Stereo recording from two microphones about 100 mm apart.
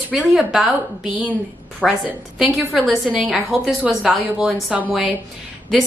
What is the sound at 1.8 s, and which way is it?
Speech, centre (ahead or behind).